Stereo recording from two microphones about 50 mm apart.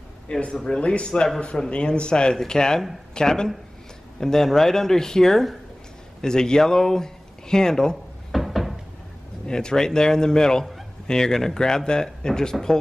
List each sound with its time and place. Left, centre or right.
0.3 s a man's voice: centre
8.3 s cupboard open or close: centre
9.5 s a man's voice: centre